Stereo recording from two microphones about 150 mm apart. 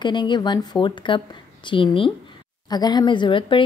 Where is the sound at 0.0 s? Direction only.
30° left (ahead or behind).